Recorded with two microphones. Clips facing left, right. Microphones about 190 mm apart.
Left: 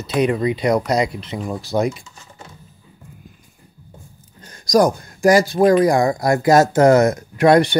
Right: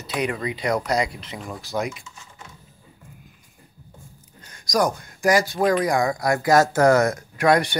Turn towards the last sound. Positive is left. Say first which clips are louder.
# left 6 dB
turn(degrees=30)  # may be behind; listen again after turning